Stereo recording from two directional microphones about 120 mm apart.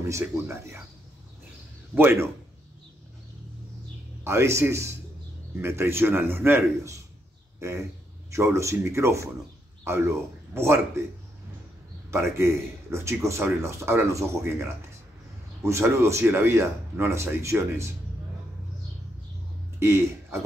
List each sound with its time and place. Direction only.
0.0 s a man's voice: 25° right (ahead or behind)
2.0 s a man's voice: 20° right (ahead or behind)
4.2 s a man's voice: 20° right (ahead or behind)
12.1 s a man's voice: 20° right (ahead or behind)
19.8 s speech: 20° right (ahead or behind)